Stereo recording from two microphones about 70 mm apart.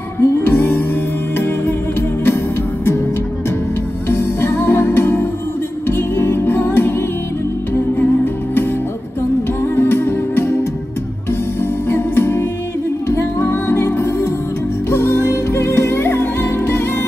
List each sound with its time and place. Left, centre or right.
0.2 s music: left
4.1 s music: left
9.8 s music: left
11.9 s music: left